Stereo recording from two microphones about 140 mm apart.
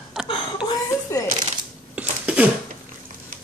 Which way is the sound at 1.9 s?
10° right (ahead or behind).